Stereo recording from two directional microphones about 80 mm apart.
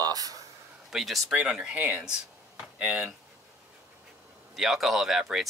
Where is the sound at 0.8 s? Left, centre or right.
Centre.